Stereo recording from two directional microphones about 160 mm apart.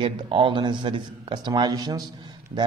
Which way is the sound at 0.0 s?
30° right (ahead or behind).